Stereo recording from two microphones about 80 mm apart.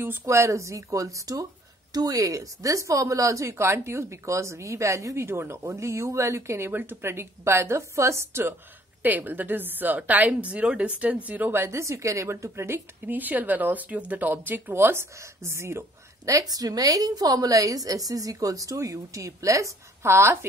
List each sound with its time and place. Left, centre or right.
0.2 s a woman's voice: right
13.0 s speech: right
16.3 s a woman's voice: right